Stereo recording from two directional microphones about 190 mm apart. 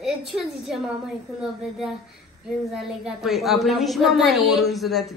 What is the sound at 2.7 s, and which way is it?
A woman's voice, 5° right (ahead or behind).